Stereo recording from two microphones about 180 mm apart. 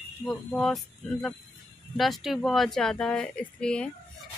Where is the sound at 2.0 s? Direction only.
Centre (ahead or behind).